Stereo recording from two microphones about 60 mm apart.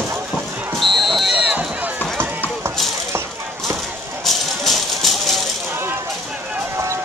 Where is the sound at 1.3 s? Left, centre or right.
Centre.